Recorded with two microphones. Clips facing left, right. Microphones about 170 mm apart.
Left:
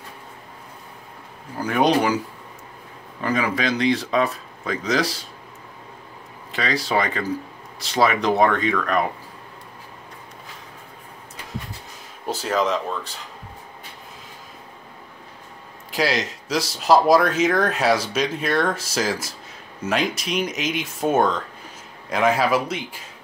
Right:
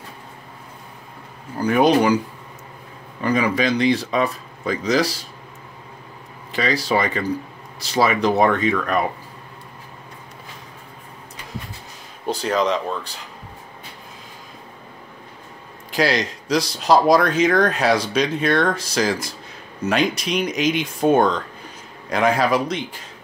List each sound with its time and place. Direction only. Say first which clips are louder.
1.6 s speech: right 3 dB; centre (ahead or behind)
3.2 s speech: right 3 dB; centre (ahead or behind)
6.5 s speech: right 2 dB; centre (ahead or behind)
12.3 s speech: right 2 dB; 5° left (ahead or behind)
15.9 s speech: right 3 dB; centre (ahead or behind)